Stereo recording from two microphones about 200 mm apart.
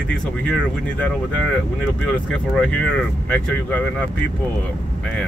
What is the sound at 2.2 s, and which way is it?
Speech, 5° left (ahead or behind).